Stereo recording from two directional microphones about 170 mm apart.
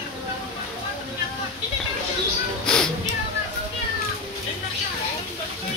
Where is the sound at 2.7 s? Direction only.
5° left (ahead or behind).